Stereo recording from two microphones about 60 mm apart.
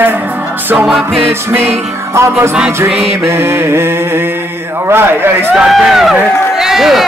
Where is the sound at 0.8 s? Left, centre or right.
Centre.